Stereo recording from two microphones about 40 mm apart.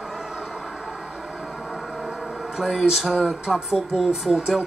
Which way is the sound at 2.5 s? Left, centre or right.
Centre.